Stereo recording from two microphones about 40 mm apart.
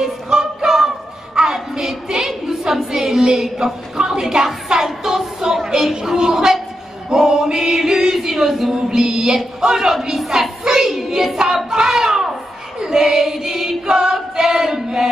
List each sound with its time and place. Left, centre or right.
0.3 s a sound: centre
6.1 s a woman's voice: centre
7.1 s music: centre
8.7 s music: centre
9.6 s a woman's voice: centre
10.9 s child singing: centre
11.7 s a sound: centre
12.7 s choir: centre